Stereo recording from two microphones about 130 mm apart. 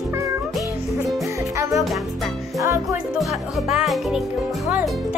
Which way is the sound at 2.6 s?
20° right (ahead or behind).